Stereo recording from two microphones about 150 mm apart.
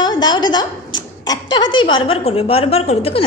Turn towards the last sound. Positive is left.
turn(degrees=40)  # may be behind; listen again after turning